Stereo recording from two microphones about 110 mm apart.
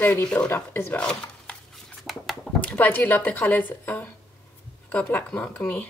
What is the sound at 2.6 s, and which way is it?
Speech, 15° left (ahead or behind).